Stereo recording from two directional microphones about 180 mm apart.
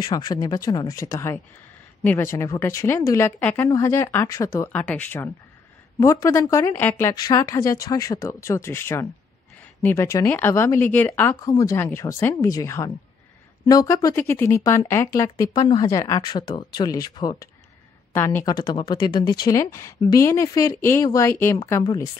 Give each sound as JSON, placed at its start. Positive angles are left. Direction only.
{"t": 0.0, "sound": "speech", "side_deg": 20}
{"t": 18.1, "sound": "speech", "side_deg": 10}